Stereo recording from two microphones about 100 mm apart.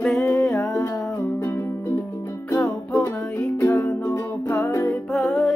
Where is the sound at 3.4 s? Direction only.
30° left (ahead or behind).